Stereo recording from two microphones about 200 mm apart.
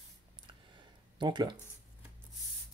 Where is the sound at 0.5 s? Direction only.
25° right (ahead or behind).